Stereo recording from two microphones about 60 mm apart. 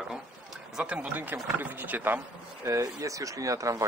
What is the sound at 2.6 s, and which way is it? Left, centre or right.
Speech, right.